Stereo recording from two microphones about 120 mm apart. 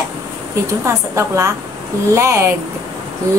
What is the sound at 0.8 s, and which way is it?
A woman's voice, 25° right (ahead or behind).